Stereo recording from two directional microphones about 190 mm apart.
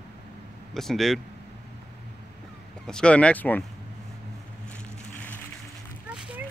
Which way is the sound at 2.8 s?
5° left (ahead or behind).